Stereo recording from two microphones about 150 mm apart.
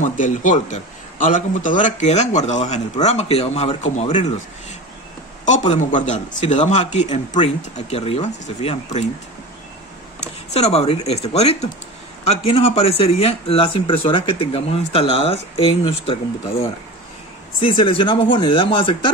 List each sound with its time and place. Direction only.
0.0 s a man's voice: 60° left (ahead or behind)
10.2 s a man's voice: 45° left (ahead or behind)
17.6 s speech: 35° left (ahead or behind)